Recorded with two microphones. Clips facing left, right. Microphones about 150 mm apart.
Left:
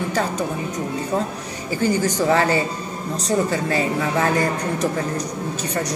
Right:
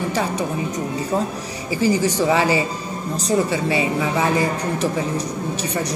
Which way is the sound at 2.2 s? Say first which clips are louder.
Left 1 dB; 5° right (ahead or behind).